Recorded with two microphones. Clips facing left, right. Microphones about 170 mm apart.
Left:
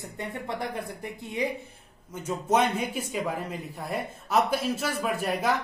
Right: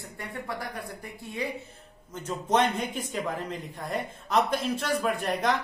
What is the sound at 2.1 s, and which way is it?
Speech, 10° left (ahead or behind).